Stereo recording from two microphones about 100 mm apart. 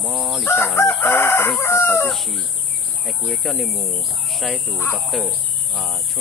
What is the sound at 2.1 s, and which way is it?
Speech, centre (ahead or behind).